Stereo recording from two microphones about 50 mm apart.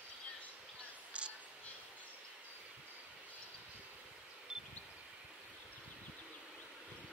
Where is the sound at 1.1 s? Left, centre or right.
Right.